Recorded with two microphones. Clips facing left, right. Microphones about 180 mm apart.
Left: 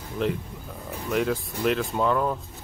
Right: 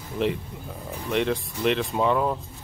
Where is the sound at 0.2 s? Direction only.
5° right (ahead or behind).